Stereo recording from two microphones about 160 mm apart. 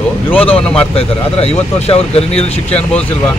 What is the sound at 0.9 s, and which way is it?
Speech, 40° left (ahead or behind).